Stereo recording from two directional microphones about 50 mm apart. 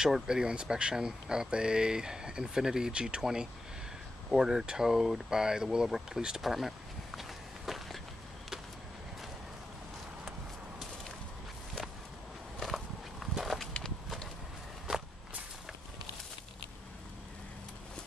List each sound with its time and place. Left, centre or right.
0.0 s speech: centre
6.4 s walk: centre
12.5 s walk: centre
14.9 s walk: centre